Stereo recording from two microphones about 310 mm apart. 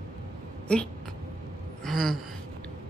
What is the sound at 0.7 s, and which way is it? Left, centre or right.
Speech, centre.